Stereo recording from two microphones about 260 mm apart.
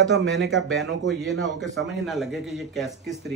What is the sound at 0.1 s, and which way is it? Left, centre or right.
Speech, right.